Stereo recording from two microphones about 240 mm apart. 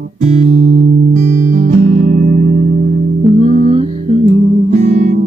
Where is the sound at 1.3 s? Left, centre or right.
Right.